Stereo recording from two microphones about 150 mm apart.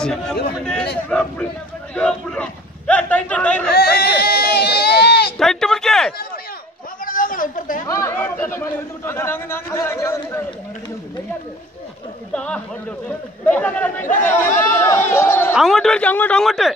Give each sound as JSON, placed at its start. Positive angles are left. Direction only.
{"t": 0.0, "sound": "a man's voice", "side_deg": 5}
{"t": 3.7, "sound": "baby cry", "side_deg": 90}
{"t": 5.4, "sound": "speech", "side_deg": 5}
{"t": 7.1, "sound": "a sound", "side_deg": 65}
{"t": 7.8, "sound": "speech", "side_deg": 20}
{"t": 12.3, "sound": "a man's voice", "side_deg": 5}
{"t": 15.5, "sound": "speech", "side_deg": 0}